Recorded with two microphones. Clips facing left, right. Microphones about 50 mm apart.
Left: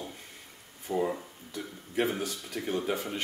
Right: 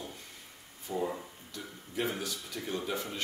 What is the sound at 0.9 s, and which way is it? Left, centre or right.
Speech, centre.